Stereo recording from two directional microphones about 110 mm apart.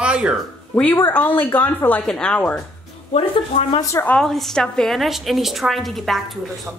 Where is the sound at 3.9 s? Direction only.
20° left (ahead or behind).